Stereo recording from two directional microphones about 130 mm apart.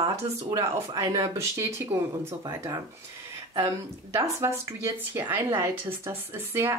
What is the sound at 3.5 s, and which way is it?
Speech, 25° right (ahead or behind).